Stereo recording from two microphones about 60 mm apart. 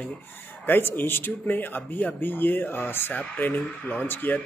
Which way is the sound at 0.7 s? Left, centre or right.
Left.